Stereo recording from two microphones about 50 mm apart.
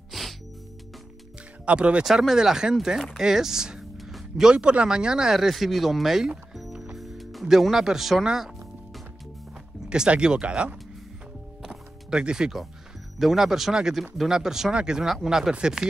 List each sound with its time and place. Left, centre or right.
0.1 s music: centre
1.7 s speech: right
2.0 s speech: centre
6.5 s music: centre
9.8 s speech: right
11.6 s music: centre
13.2 s speech: centre